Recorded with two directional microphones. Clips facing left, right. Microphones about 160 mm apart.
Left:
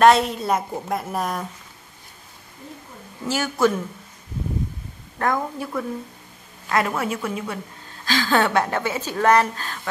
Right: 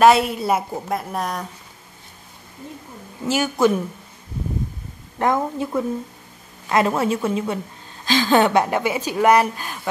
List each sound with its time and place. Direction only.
0.0 s a woman's voice: 5° right (ahead or behind)
3.3 s speech: 15° right (ahead or behind)
5.2 s a woman's voice: 20° right (ahead or behind)